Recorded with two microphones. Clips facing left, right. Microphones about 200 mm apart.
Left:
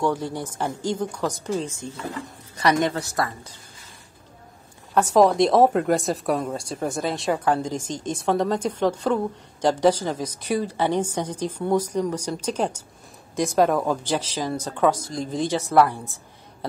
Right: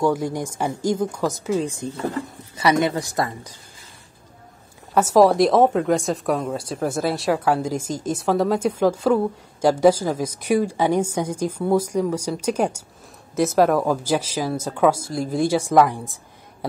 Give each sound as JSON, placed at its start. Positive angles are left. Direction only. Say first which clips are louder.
{"t": 0.0, "sound": "speech", "louder": "right 3 dB", "side_deg": -10}
{"t": 4.9, "sound": "speech", "louder": "right 2 dB", "side_deg": -5}